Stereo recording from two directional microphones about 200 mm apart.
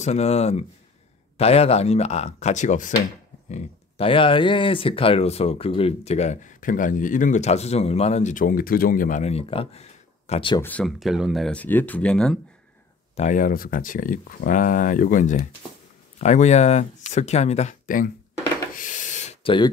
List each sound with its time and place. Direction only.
0.0 s speech: 30° left (ahead or behind)
10.6 s speech: 5° left (ahead or behind)
13.1 s speech: 40° left (ahead or behind)
18.8 s a sound: 40° left (ahead or behind)